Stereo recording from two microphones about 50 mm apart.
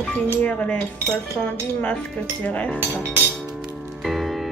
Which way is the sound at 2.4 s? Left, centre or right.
Left.